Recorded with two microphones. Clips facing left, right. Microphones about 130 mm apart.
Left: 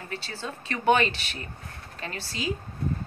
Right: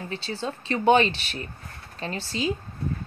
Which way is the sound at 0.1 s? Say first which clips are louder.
Right 4 dB; 20° right (ahead or behind).